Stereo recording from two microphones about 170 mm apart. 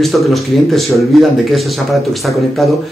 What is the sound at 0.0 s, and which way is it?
Speech, centre (ahead or behind).